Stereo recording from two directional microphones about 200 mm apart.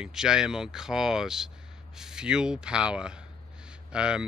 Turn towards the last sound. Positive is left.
turn(degrees=-5)  # may be behind; listen again after turning